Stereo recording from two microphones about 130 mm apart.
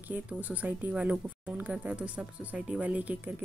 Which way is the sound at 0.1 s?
10° right (ahead or behind).